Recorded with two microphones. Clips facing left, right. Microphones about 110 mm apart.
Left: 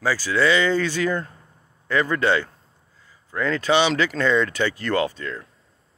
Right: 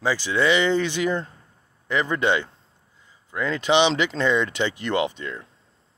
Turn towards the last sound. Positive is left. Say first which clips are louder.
# left 1 dB
turn(degrees=-20)  # may be behind; listen again after turning